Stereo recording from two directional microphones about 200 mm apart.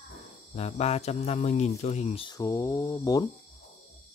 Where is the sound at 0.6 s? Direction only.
30° left (ahead or behind); by 3.3 s 15° left (ahead or behind).